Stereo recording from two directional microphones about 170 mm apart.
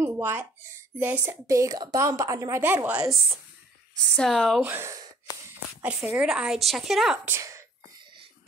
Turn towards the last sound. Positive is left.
turn(degrees=-15)  # may be behind; listen again after turning